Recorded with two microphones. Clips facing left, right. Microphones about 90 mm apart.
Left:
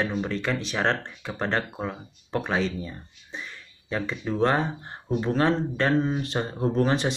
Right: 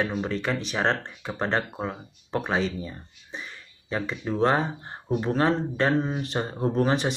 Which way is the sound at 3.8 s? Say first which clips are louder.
Even; 15° right (ahead or behind).